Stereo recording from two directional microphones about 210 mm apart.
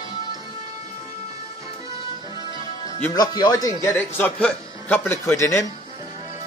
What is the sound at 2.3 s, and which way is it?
Music, 20° right (ahead or behind).